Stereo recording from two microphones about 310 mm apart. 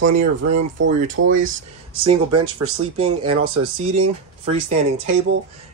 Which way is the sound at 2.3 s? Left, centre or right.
Right.